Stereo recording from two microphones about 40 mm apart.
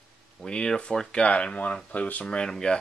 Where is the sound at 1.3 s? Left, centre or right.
Left.